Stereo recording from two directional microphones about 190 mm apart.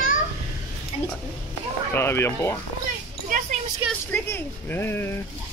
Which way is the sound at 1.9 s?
10° left (ahead or behind).